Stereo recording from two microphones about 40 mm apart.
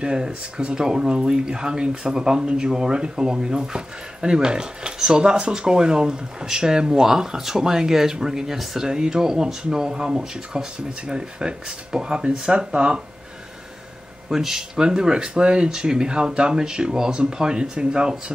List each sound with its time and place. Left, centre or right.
0.0 s speech: right
14.3 s speech: centre